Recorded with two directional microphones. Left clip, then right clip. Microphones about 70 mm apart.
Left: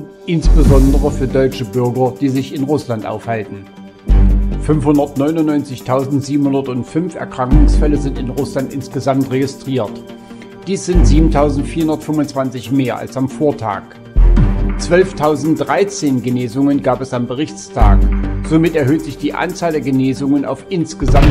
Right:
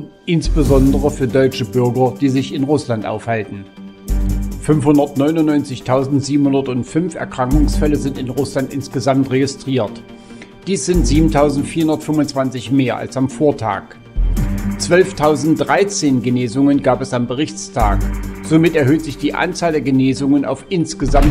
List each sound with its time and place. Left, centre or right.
0.3 s speech: right
1.9 s speech: centre
2.1 s speech: right
4.6 s speech: right
5.2 s speech: right
5.6 s speech: right
14.9 s speech: right
18.6 s speech: right
19.0 s speech: right